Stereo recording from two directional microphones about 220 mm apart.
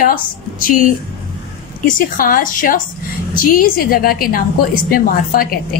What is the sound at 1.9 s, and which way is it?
A woman's voice, 40° left (ahead or behind).